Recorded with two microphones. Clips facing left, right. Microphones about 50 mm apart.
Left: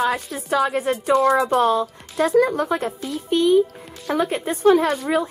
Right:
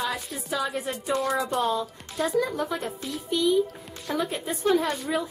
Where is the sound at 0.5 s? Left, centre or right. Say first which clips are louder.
Left 9 dB; left.